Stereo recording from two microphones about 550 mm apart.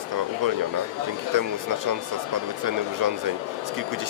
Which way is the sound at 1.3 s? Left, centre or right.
Right.